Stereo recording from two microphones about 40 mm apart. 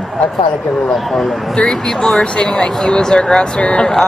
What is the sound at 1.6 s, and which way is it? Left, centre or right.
Speech, centre.